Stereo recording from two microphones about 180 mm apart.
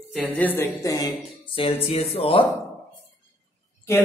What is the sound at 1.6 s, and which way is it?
Speech, 30° left (ahead or behind).